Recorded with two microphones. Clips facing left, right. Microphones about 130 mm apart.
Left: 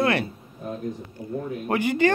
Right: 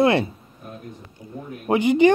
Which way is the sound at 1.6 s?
20° right (ahead or behind).